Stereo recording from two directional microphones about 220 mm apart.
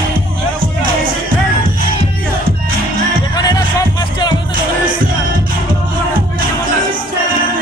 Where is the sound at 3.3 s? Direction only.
15° left (ahead or behind).